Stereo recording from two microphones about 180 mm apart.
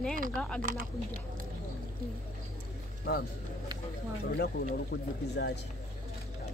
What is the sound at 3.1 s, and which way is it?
Speech, 65° left (ahead or behind).